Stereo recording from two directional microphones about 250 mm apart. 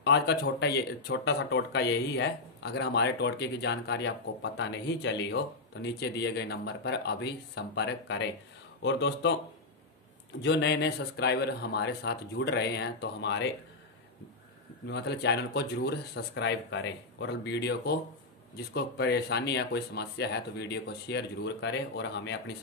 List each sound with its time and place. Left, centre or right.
0.0 s speech: left
10.4 s speech: left
14.9 s speech: left